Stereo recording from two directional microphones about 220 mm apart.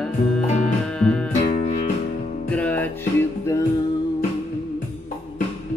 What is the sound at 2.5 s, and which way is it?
Music, 5° left (ahead or behind).